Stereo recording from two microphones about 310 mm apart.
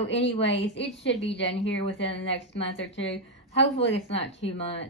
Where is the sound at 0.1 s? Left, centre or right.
Left.